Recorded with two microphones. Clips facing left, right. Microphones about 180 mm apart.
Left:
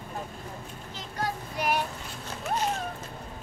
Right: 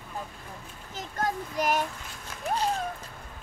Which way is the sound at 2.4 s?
30° right (ahead or behind).